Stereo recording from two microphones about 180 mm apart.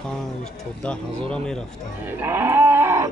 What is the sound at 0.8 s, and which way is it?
Speech, 5° left (ahead or behind).